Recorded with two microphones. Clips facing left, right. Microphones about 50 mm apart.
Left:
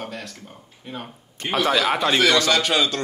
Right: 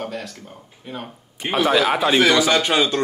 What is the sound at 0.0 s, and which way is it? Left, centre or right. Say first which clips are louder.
A man's voice: right 4 dB; centre.